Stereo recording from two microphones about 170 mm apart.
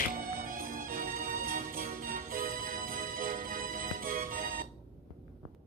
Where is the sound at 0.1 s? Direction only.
55° right (ahead or behind).